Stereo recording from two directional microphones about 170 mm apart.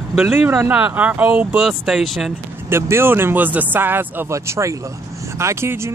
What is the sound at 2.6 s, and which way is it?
Speech, 15° right (ahead or behind).